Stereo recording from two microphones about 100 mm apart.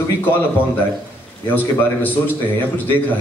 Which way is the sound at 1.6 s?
20° left (ahead or behind).